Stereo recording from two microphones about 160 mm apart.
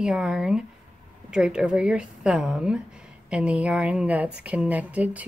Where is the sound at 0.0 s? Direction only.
5° right (ahead or behind).